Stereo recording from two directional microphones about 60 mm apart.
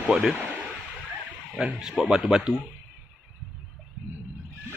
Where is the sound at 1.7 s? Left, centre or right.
Centre.